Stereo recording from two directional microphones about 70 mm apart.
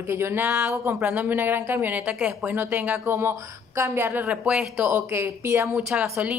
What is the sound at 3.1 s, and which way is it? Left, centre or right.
A woman's voice, right.